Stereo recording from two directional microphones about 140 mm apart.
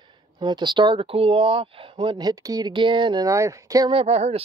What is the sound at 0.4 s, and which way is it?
Speech, 35° right (ahead or behind).